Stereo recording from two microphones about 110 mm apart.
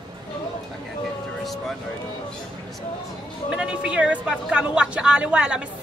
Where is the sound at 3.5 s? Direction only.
10° right (ahead or behind).